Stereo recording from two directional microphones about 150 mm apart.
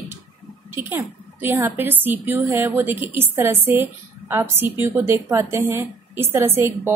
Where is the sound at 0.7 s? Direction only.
15° right (ahead or behind).